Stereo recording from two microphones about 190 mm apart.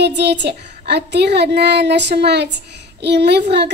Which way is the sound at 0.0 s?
65° right (ahead or behind).